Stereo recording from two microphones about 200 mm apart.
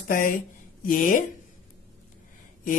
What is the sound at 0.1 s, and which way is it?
Speech, 45° left (ahead or behind).